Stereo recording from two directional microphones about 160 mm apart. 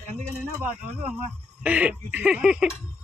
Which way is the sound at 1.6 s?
10° right (ahead or behind).